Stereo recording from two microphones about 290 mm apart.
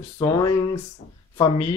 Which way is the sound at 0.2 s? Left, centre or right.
Centre.